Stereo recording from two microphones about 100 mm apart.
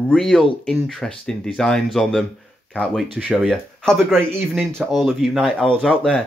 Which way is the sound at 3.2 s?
5° left (ahead or behind).